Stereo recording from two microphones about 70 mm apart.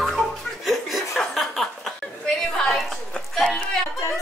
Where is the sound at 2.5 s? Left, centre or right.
Centre.